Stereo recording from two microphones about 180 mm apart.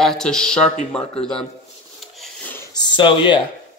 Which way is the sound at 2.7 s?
25° left (ahead or behind).